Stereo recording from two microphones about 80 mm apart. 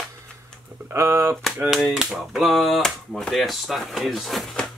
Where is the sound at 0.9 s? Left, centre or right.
Right.